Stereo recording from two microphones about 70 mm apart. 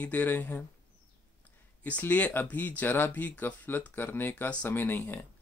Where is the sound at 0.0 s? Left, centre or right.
Left.